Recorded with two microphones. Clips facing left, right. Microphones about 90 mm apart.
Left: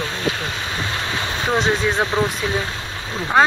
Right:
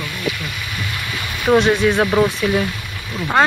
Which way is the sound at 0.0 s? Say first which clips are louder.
Left 1 dB; 25° left (ahead or behind).